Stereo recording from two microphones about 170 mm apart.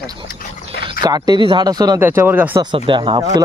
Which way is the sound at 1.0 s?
25° right (ahead or behind).